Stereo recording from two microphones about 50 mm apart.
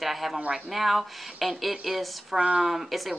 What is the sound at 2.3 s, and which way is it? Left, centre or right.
Speech, centre.